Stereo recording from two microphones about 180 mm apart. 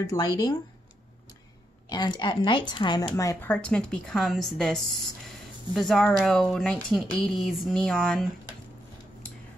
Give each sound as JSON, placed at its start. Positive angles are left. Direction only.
{"t": 0.0, "sound": "a woman's voice", "side_deg": 20}
{"t": 1.9, "sound": "a woman's voice", "side_deg": 25}
{"t": 3.2, "sound": "speech", "side_deg": 15}